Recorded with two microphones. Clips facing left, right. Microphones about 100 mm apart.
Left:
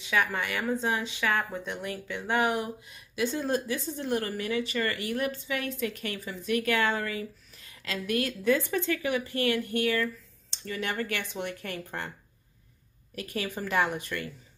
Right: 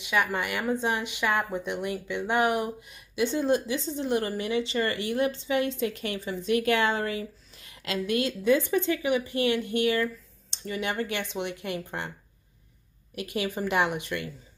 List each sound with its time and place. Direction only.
0.0 s a woman's voice: 15° right (ahead or behind)
13.1 s a woman's voice: 15° right (ahead or behind)